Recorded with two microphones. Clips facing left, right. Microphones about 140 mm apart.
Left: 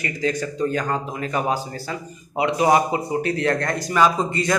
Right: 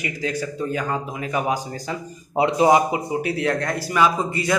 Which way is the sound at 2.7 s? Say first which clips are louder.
Right 1 dB; 10° right (ahead or behind).